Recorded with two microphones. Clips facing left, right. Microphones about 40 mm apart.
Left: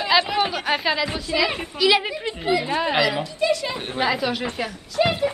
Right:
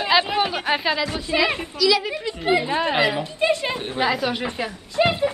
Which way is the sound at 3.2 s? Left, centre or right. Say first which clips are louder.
Right 1 dB; right.